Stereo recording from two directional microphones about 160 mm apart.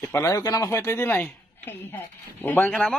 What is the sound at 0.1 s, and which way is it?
A man's voice, 20° left (ahead or behind).